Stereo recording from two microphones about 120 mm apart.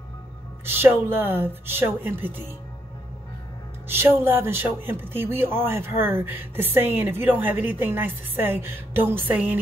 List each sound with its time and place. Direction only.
0.7 s speech: 20° right (ahead or behind)
3.9 s speech: 20° right (ahead or behind)